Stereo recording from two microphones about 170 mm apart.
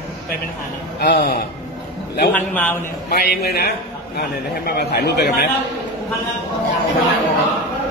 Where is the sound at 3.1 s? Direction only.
70° left (ahead or behind).